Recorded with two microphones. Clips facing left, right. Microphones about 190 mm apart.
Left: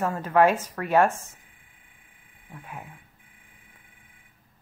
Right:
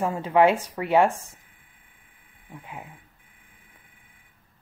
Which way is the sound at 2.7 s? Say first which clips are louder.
Even; 20° right (ahead or behind).